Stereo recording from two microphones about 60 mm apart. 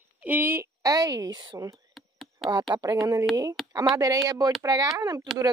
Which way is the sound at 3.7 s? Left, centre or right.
Right.